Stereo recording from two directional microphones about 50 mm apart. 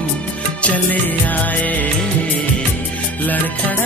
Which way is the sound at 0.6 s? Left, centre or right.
Left.